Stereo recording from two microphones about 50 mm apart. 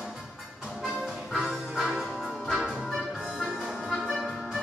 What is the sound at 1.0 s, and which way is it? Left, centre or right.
Music, centre.